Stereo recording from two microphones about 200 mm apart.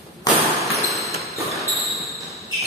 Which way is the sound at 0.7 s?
Centre (ahead or behind).